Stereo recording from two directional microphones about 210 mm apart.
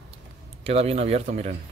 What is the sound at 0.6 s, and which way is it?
Speech, 30° right (ahead or behind).